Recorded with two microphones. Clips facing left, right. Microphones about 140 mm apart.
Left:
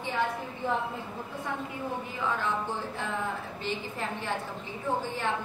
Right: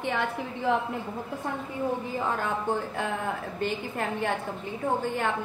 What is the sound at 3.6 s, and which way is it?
A woman's voice, 60° right (ahead or behind).